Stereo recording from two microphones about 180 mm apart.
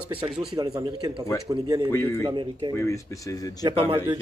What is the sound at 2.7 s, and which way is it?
Speech, 15° left (ahead or behind).